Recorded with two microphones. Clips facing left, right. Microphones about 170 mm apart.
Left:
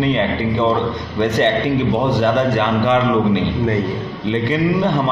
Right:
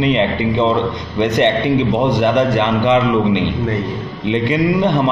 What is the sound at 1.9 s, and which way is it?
A man's voice, 15° right (ahead or behind).